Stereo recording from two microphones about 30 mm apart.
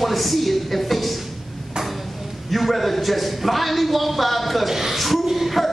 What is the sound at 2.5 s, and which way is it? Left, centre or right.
A man's voice, centre.